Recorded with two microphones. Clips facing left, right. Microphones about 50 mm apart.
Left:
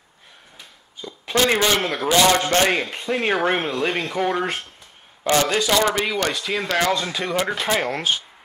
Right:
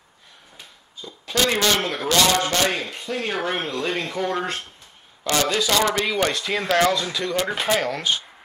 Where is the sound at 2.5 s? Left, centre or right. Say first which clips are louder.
Left 4 dB; left.